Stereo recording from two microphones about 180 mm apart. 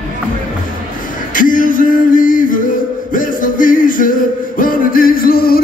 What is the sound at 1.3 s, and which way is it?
Music, 50° left (ahead or behind).